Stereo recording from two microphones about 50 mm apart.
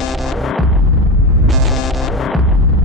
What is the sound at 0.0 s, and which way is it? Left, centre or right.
Music, centre.